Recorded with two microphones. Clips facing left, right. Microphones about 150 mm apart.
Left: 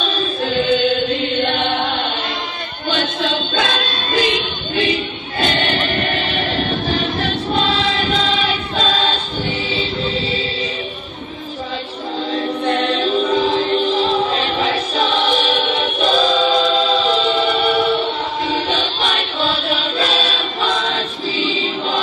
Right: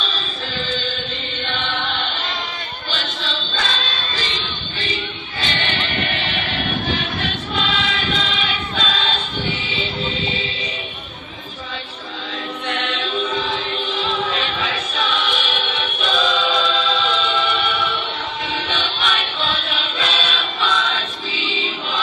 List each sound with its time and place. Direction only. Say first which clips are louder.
0.0 s chant: left 8 dB; 55° left (ahead or behind)
2.9 s music: left 9 dB; 55° left (ahead or behind)
5.4 s choir: left 7 dB; 45° left (ahead or behind)
12.6 s music: left 7 dB; 35° left (ahead or behind)
18.5 s choir: left 5 dB; 40° left (ahead or behind)